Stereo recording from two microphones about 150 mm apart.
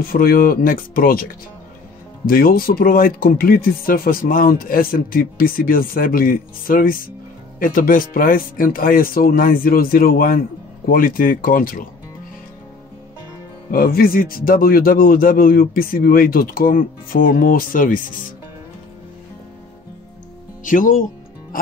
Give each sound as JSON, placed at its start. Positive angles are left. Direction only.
{"t": 0.1, "sound": "speech", "side_deg": 75}
{"t": 2.2, "sound": "speech", "side_deg": 75}
{"t": 13.7, "sound": "speech", "side_deg": 75}
{"t": 20.6, "sound": "music", "side_deg": 60}